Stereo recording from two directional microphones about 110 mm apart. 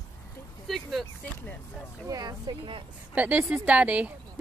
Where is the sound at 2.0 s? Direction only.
35° right (ahead or behind).